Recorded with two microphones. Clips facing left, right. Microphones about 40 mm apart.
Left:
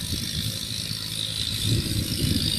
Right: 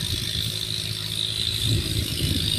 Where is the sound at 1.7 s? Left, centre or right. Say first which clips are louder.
Even; right.